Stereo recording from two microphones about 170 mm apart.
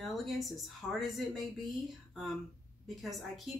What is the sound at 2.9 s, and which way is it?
Speech, centre (ahead or behind).